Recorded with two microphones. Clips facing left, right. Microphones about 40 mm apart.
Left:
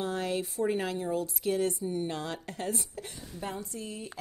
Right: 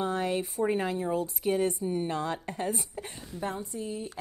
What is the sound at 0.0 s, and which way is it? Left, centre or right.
A woman's voice, right.